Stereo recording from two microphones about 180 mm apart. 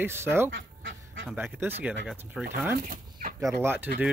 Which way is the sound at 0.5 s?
90° right.